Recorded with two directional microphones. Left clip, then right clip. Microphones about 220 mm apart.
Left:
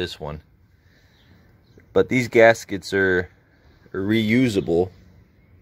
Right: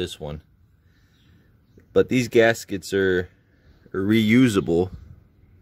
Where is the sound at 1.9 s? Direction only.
15° right (ahead or behind).